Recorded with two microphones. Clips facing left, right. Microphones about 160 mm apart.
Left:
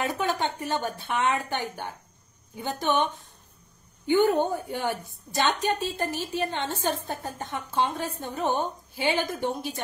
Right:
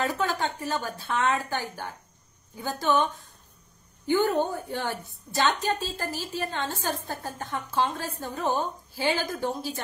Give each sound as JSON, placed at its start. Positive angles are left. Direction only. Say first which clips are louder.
{"t": 0.0, "sound": "a woman's voice", "louder": "even", "side_deg": 20}
{"t": 4.1, "sound": "a woman's voice", "louder": "left 2 dB", "side_deg": 15}